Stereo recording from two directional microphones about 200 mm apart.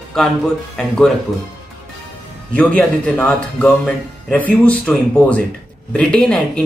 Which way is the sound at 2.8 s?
5° left (ahead or behind).